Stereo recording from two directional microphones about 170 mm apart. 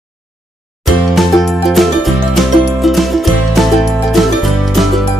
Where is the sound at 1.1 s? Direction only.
Centre (ahead or behind).